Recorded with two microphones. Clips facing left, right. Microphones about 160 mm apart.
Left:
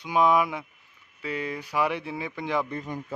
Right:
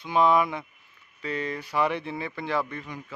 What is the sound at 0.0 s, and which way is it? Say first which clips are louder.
Speech: even; 10° left (ahead or behind).